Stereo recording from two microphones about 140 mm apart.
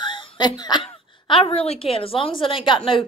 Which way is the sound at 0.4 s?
30° left (ahead or behind).